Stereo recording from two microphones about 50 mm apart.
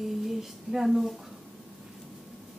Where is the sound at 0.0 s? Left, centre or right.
Centre.